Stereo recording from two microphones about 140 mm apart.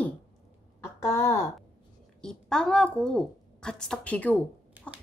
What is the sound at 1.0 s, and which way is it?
Speech, 20° left (ahead or behind).